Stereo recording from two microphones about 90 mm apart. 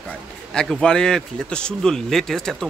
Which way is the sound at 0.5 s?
5° left (ahead or behind).